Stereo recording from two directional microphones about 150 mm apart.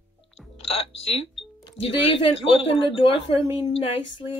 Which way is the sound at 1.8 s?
40° left (ahead or behind).